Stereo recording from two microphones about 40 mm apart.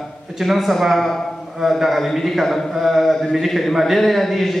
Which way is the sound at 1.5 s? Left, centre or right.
Centre.